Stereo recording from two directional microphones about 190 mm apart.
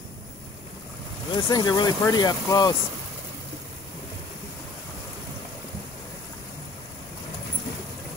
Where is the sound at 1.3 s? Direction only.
20° left (ahead or behind).